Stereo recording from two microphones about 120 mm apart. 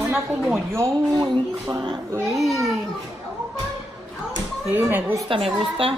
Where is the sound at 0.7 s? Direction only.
25° right (ahead or behind).